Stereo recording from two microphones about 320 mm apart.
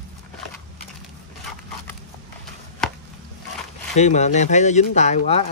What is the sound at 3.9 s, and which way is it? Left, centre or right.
Speech, left.